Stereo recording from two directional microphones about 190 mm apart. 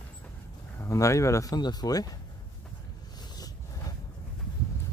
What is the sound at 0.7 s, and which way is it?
Speech, 15° left (ahead or behind).